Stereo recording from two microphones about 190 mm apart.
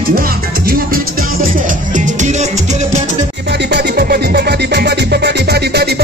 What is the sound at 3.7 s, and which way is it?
Music, 55° right (ahead or behind).